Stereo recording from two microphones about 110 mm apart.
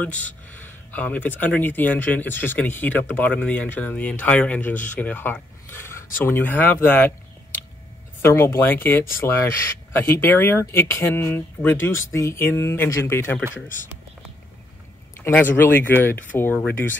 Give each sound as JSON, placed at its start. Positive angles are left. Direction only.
{"t": 0.0, "sound": "speech", "side_deg": 15}
{"t": 8.2, "sound": "speech", "side_deg": 20}
{"t": 15.2, "sound": "speech", "side_deg": 20}